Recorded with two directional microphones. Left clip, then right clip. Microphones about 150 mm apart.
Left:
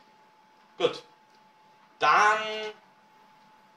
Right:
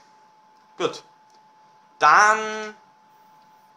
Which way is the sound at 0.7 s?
65° right (ahead or behind).